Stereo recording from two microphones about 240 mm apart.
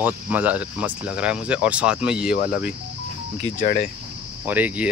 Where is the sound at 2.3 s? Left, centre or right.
Left.